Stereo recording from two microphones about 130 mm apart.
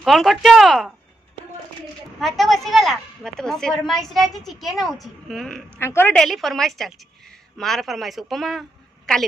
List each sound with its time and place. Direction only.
0.0 s a woman's voice: centre (ahead or behind)
2.1 s a woman's voice: centre (ahead or behind)
5.8 s a woman's voice: 20° left (ahead or behind)
6.1 s a woman's voice: centre (ahead or behind)